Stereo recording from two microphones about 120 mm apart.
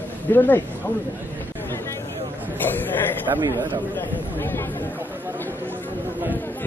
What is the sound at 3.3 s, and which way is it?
Speech, 35° right (ahead or behind).